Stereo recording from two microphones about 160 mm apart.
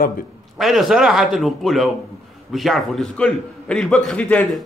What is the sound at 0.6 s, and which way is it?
Speech, centre (ahead or behind).